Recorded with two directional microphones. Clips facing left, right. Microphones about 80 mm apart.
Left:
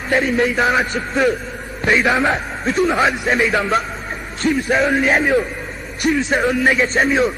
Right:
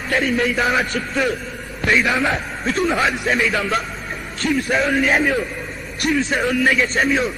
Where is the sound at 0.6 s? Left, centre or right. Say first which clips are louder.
Left 2 dB; centre.